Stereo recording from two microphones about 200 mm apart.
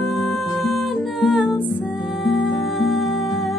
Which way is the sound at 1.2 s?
Centre (ahead or behind).